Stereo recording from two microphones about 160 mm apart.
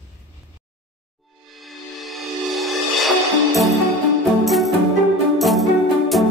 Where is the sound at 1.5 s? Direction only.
Centre (ahead or behind).